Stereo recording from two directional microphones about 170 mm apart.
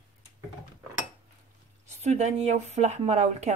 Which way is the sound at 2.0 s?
40° right (ahead or behind).